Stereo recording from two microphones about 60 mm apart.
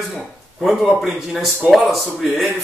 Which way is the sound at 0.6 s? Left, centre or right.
Centre.